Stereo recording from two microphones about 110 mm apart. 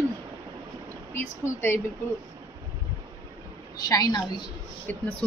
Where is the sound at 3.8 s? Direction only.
35° left (ahead or behind).